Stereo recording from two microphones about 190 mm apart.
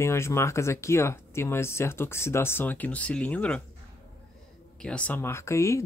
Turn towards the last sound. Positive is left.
turn(degrees=15)  # may be behind; listen again after turning